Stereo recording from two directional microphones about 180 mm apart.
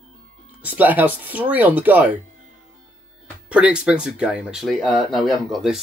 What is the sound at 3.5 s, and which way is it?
Speech, 5° right (ahead or behind).